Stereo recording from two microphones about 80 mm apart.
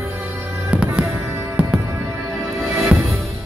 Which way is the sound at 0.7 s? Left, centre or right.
Centre.